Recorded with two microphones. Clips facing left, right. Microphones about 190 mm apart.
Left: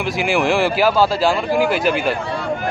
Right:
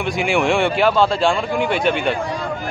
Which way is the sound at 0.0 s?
Centre (ahead or behind).